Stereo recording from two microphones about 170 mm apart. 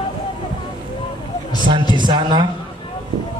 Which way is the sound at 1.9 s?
25° right (ahead or behind).